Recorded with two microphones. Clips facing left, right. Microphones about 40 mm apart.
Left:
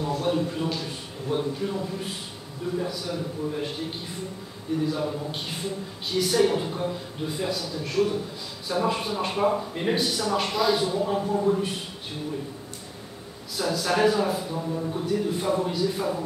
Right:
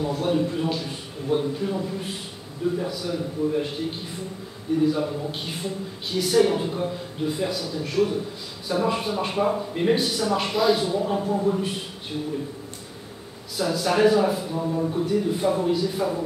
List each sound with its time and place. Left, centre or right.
0.0 s speech: centre
4.8 s speech: centre
13.6 s speech: centre
14.6 s speech: centre
15.0 s speech: centre